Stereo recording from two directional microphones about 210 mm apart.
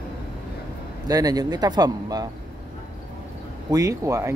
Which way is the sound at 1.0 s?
20° right (ahead or behind).